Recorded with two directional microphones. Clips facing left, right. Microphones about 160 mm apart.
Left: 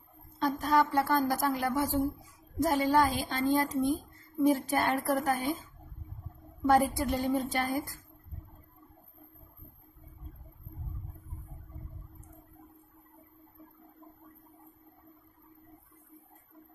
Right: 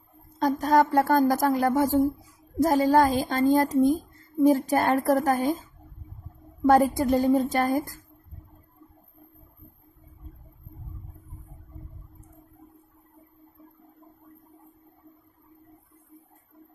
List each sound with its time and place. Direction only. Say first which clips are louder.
0.4 s a woman's voice: right 6 dB; 40° right (ahead or behind)